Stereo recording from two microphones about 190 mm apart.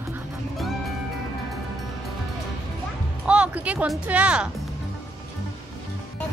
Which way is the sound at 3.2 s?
5° right (ahead or behind).